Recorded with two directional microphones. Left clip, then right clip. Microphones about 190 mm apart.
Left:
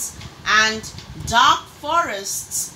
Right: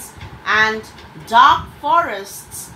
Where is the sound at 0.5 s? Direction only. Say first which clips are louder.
Right 1 dB; 45° left (ahead or behind).